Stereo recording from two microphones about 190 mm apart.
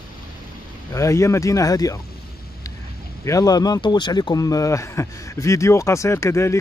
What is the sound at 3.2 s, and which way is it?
Speech, 20° left (ahead or behind).